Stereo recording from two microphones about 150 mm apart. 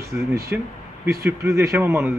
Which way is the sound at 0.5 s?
5° right (ahead or behind).